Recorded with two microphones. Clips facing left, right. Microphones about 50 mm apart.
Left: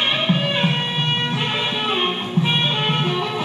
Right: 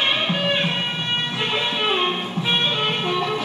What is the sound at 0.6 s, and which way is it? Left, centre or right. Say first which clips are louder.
Music: left 2 dB; centre.